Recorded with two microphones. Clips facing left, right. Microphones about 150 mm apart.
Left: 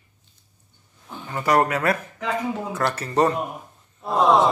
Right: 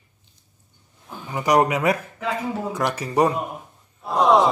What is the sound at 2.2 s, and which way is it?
Speech, 5° right (ahead or behind).